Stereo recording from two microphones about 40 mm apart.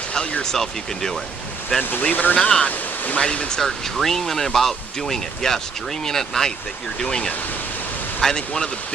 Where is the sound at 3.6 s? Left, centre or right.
Centre.